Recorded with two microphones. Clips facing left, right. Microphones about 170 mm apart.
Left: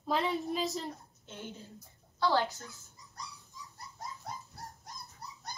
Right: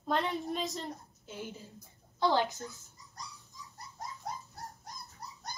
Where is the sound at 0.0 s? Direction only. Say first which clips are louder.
Left 1 dB; centre (ahead or behind).